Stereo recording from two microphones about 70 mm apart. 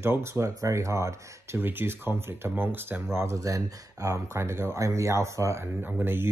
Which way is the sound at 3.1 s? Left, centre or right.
Right.